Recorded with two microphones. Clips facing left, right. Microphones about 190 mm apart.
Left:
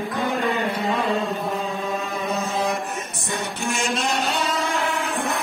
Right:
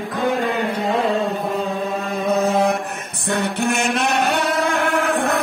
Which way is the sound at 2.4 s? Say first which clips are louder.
Right 6 dB; 60° right (ahead or behind).